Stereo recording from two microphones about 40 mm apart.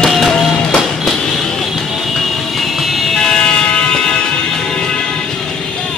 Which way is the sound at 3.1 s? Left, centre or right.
Centre.